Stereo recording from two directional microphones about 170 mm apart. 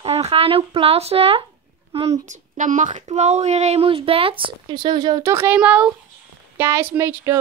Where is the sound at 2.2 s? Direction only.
50° right (ahead or behind).